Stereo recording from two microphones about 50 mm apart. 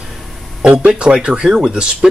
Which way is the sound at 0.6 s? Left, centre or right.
Right.